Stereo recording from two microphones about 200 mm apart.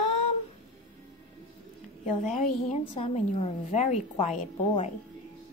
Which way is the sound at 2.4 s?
30° left (ahead or behind).